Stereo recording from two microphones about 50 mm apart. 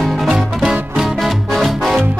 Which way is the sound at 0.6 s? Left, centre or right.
Centre.